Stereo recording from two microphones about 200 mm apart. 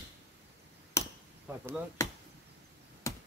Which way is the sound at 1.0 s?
15° left (ahead or behind).